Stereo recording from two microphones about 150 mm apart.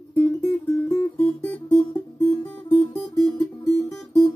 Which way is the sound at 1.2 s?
10° left (ahead or behind).